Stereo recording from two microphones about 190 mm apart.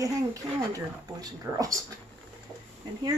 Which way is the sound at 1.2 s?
20° right (ahead or behind).